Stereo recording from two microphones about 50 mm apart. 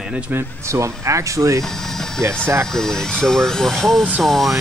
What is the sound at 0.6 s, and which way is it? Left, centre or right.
Speech, right.